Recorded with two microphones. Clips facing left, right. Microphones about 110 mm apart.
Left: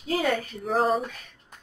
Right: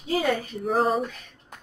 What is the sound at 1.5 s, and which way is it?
Music, 65° right (ahead or behind).